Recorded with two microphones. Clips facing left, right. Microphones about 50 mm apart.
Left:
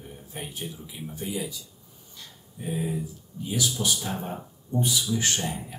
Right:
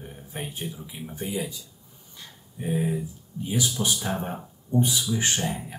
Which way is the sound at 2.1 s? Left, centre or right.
Right.